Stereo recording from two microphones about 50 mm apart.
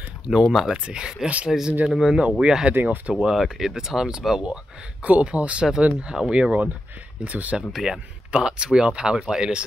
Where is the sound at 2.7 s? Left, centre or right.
Right.